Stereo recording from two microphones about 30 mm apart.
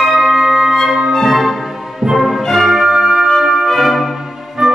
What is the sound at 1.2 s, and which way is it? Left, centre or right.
Music, centre.